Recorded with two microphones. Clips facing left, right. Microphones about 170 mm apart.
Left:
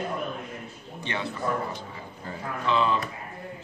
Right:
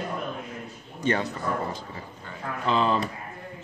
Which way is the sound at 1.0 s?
45° right (ahead or behind).